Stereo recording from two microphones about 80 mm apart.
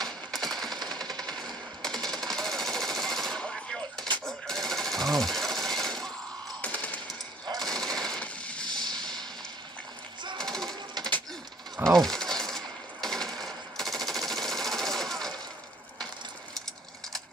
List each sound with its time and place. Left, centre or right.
0.3 s a sound: centre
0.7 s jackhammer: right
1.1 s machine gun: centre
2.2 s jackhammer: centre
4.2 s sewing machine: centre
6.6 s music: centre
7.6 s jackhammer: centre
8.2 s a sound: centre
10.3 s sewing machine: centre
11.7 s a sound: centre